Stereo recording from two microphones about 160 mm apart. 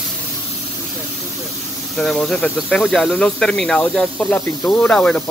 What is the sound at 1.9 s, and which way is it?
Speech, centre (ahead or behind).